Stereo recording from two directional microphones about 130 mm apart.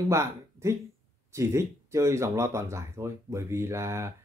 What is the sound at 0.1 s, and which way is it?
Speech, 20° right (ahead or behind).